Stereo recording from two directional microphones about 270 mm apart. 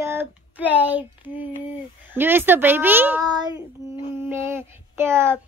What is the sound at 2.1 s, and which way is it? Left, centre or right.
Speech, centre.